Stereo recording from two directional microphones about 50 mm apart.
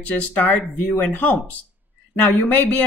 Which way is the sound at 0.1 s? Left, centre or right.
Left.